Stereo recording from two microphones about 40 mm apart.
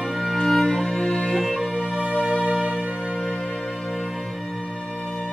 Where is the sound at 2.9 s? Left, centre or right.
Right.